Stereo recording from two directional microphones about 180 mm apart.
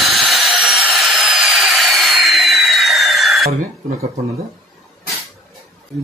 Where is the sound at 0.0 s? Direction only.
Centre (ahead or behind).